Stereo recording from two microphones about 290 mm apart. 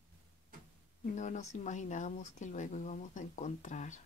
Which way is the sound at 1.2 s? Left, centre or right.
Left.